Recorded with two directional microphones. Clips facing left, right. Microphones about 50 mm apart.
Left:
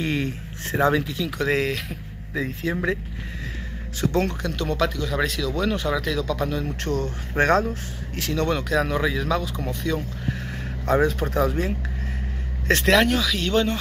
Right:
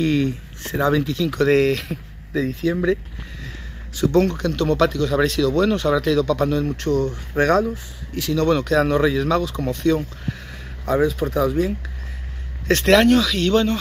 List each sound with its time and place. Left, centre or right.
0.0 s speech: left
1.0 s a man's voice: centre
2.6 s speech: left
4.0 s a man's voice: left; by 6.7 s centre
6.8 s speech: left
8.5 s a man's voice: centre
10.9 s speech: left
12.8 s a man's voice: centre